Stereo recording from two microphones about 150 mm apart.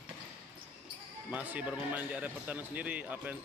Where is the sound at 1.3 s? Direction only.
10° right (ahead or behind).